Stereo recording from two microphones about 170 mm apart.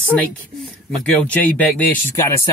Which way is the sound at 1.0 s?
10° left (ahead or behind).